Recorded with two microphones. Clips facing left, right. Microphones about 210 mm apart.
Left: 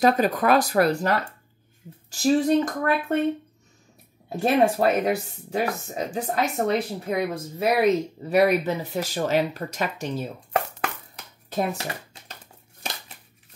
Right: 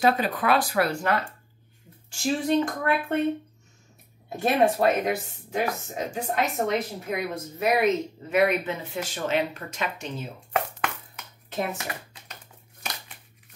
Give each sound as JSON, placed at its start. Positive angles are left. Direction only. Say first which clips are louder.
{"t": 0.0, "sound": "speech", "louder": "left 3 dB", "side_deg": 45}
{"t": 4.4, "sound": "speech", "louder": "left 2 dB", "side_deg": 35}
{"t": 10.8, "sound": "a sound", "louder": "left 1 dB", "side_deg": 35}